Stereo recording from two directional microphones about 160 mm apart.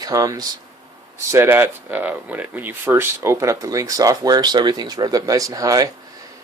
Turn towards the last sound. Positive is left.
turn(degrees=-20)  # may be behind; listen again after turning